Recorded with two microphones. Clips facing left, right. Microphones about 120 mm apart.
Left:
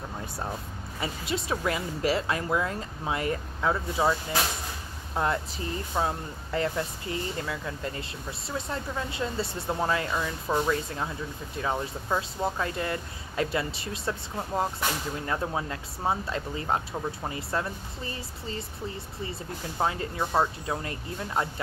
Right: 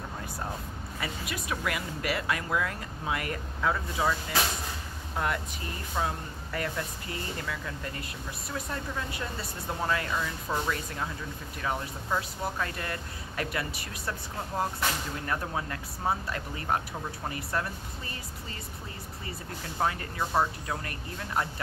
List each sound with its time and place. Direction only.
1.0 s speech: 25° left (ahead or behind)
15.2 s speech: 20° left (ahead or behind)
19.8 s speech: 25° left (ahead or behind)